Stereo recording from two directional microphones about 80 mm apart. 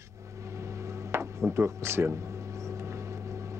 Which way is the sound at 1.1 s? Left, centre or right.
Right.